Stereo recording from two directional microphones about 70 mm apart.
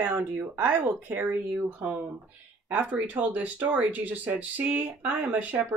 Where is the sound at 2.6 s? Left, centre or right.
Right.